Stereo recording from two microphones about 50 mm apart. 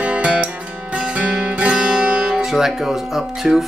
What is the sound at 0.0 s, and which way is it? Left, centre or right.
Music, right.